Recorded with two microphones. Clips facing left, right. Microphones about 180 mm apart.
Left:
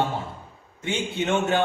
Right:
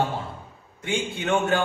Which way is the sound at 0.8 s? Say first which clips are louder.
Left 1 dB; 25° left (ahead or behind).